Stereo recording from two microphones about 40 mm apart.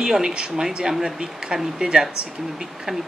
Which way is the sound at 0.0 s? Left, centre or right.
Centre.